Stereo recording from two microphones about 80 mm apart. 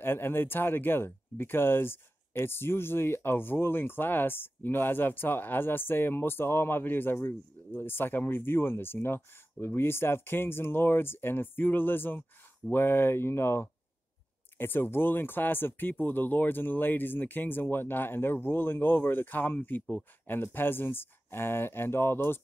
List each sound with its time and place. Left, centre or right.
0.0 s speech: left